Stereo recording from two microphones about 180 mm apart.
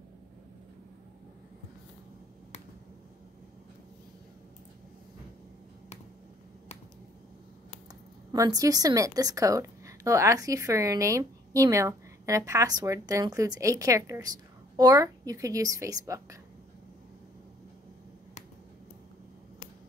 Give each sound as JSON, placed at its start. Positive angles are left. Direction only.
{"t": 8.3, "sound": "a woman's voice", "side_deg": -20}